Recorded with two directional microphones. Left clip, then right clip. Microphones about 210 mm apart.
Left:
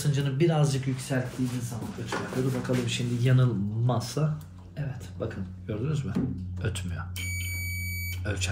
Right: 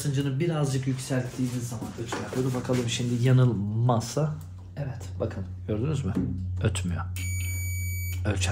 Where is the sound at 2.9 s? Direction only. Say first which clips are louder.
Right 2 dB; 35° right (ahead or behind).